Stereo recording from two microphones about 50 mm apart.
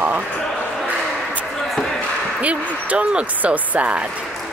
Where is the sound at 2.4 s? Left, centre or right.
Right.